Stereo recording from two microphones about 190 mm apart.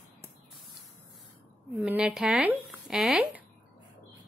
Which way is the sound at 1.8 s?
5° right (ahead or behind).